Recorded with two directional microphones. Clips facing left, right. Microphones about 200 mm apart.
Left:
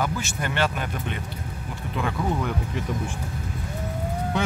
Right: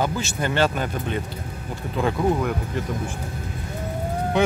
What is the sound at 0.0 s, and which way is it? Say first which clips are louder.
Speech: right 3 dB; 30° right (ahead or behind).